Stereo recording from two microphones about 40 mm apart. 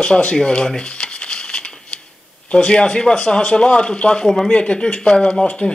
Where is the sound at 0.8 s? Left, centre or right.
Left.